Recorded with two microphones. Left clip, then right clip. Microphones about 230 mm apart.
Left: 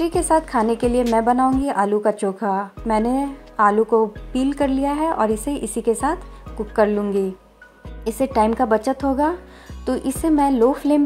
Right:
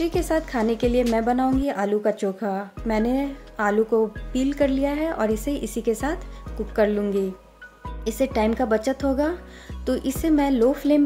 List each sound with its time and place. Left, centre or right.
0.0 s a woman's voice: centre